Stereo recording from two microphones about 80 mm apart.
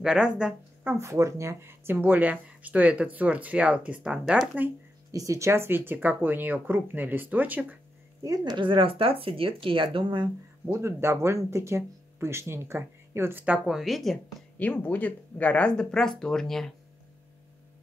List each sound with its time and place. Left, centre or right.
0.0 s speech: centre
0.8 s speech: right; by 4.5 s centre
5.1 s speech: right
8.2 s a woman's voice: right
8.5 s speech: right
10.6 s speech: right
13.7 s a woman's voice: centre
14.6 s speech: centre